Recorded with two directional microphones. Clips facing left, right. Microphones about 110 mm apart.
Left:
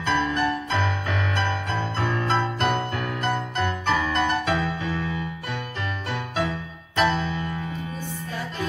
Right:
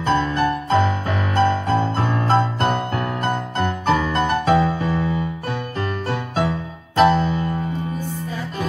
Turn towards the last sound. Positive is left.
turn(degrees=-40)  # may be behind; listen again after turning